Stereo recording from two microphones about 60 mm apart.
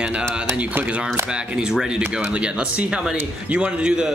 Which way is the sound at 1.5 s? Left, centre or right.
Centre.